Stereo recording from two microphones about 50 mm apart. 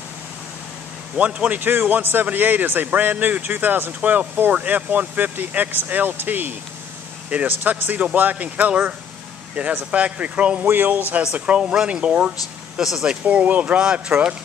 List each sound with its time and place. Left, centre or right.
1.1 s speech: right
1.6 s speech: right
10.7 s speech: right
11.3 s speech: right